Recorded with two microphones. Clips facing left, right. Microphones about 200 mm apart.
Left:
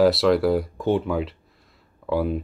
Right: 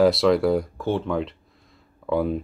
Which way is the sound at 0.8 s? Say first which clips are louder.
Left 3 dB; 15° left (ahead or behind).